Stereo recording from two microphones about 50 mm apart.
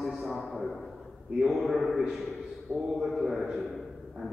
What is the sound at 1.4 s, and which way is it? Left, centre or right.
Speech, centre.